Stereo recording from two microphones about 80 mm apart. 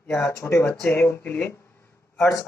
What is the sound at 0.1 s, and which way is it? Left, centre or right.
Speech, left.